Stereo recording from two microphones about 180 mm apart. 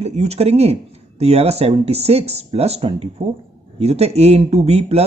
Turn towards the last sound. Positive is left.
turn(degrees=-35)  # may be behind; listen again after turning